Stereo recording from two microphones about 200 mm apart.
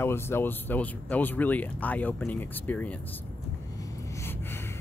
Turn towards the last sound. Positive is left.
turn(degrees=10)  # may be behind; listen again after turning